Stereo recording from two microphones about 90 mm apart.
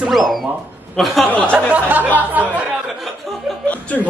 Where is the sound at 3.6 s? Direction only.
15° left (ahead or behind).